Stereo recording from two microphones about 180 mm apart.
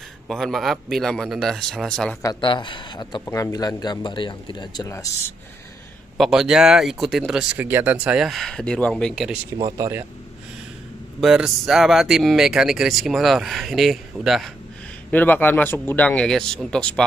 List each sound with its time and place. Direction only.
0.3 s speech: centre (ahead or behind)
2.2 s speech: 25° left (ahead or behind)
6.1 s speech: centre (ahead or behind)
9.6 s speech: 25° right (ahead or behind)
11.1 s speech: centre (ahead or behind)